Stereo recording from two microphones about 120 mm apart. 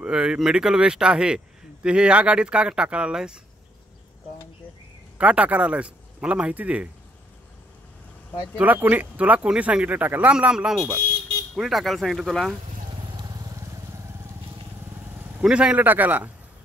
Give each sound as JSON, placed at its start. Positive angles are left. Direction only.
{"t": 0.0, "sound": "speech", "side_deg": -5}
{"t": 5.1, "sound": "speech", "side_deg": -10}
{"t": 8.5, "sound": "speech", "side_deg": -15}
{"t": 12.9, "sound": "vehicle", "side_deg": -35}
{"t": 15.4, "sound": "speech", "side_deg": -5}